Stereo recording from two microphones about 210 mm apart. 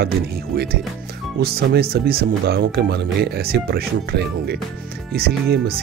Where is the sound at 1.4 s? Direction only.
50° right (ahead or behind).